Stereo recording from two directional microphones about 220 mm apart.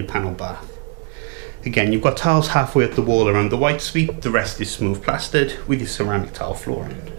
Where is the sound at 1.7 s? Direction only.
10° right (ahead or behind).